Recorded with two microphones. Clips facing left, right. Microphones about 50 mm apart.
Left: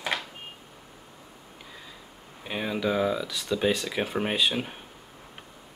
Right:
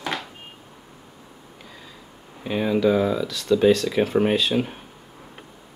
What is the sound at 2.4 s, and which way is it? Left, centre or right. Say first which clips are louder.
Speech: right 8 dB; centre.